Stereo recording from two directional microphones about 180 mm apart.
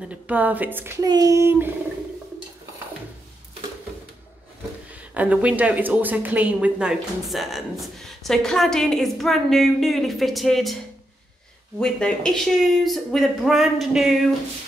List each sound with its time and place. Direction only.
0.1 s speech: 10° right (ahead or behind)
4.9 s a woman's voice: 10° right (ahead or behind)
11.8 s a woman's voice: 5° left (ahead or behind)